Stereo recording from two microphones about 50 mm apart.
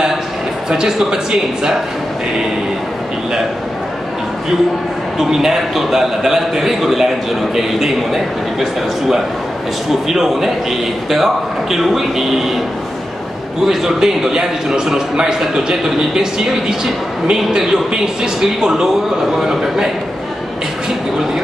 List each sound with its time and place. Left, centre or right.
0.7 s a man's voice: centre
5.3 s a man's voice: centre
10.0 s speech: centre
13.7 s a man's voice: centre